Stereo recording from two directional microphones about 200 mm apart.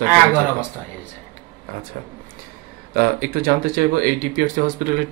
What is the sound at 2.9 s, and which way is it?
Speech, 45° right (ahead or behind).